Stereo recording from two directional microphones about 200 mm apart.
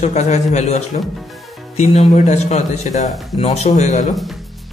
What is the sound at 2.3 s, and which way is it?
Speech, 35° left (ahead or behind).